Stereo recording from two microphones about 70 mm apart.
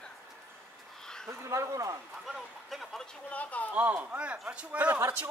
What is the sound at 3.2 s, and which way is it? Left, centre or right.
Speech, left.